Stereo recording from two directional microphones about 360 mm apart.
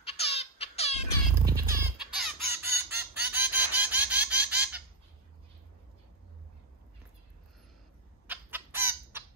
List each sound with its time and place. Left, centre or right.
0.0 s a sound: centre
1.5 s fowl: centre
8.3 s chicken: centre